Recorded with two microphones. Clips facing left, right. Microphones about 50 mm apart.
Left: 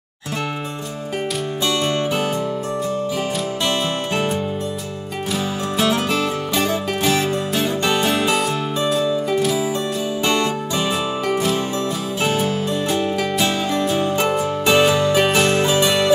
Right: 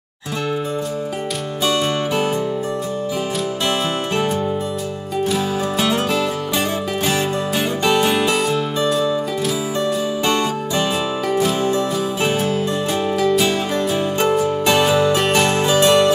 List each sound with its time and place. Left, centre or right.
6.5 s music: centre
11.7 s music: centre
12.9 s music: centre